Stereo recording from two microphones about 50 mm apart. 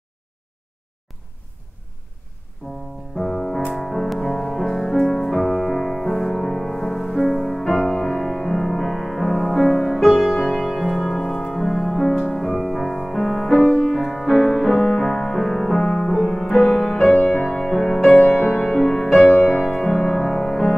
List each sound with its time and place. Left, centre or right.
2.6 s music: left
3.2 s piano: centre
3.7 s music: centre
13.9 s music: centre